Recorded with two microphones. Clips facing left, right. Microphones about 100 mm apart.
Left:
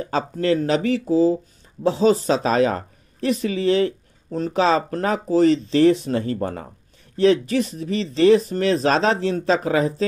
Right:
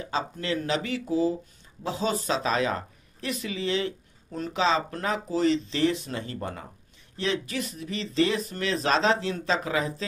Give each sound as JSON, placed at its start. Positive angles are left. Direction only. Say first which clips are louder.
{"t": 0.1, "sound": "speech", "louder": "left 9 dB", "side_deg": 45}